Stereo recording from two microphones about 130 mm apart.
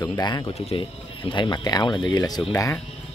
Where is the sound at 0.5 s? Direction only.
45° left (ahead or behind); by 2.4 s 30° left (ahead or behind).